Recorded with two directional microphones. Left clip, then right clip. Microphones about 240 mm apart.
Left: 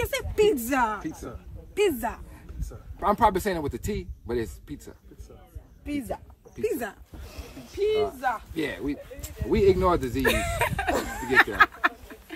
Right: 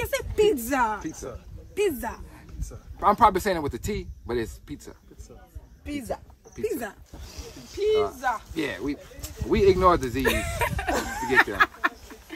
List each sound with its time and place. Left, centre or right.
0.0 s speech: centre
3.0 s speech: centre
5.9 s speech: right
6.5 s speech: centre
8.5 s speech: centre
10.2 s speech: centre
10.9 s speech: right
11.3 s speech: centre